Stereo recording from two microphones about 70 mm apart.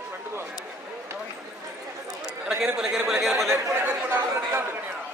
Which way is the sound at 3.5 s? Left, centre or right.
Right.